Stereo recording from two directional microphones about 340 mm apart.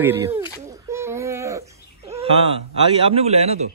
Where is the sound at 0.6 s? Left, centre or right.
Centre.